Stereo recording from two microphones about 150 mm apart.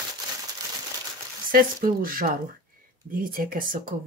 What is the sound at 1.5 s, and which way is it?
Speech, 70° right (ahead or behind).